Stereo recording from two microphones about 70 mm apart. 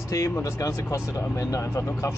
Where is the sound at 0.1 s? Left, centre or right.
Left.